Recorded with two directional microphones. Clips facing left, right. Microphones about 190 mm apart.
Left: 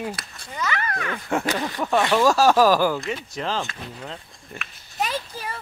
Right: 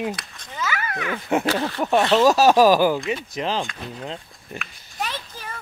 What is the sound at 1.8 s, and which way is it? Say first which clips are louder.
Speech: right 2 dB; 15° right (ahead or behind).